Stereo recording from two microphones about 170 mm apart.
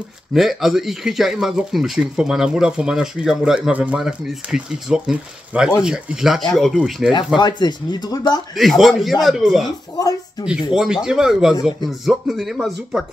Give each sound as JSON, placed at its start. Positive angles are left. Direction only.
{"t": 0.3, "sound": "speech", "side_deg": 0}
{"t": 7.3, "sound": "speech", "side_deg": 25}
{"t": 8.5, "sound": "speech", "side_deg": 0}
{"t": 10.7, "sound": "speech", "side_deg": -5}